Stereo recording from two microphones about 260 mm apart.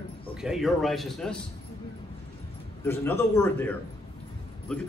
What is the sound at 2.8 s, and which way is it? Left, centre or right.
A man's voice, centre.